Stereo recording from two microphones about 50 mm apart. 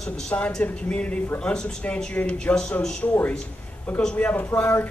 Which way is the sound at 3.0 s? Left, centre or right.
Left.